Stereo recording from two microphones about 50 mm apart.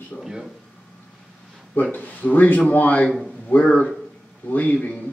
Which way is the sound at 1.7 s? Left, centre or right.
Left.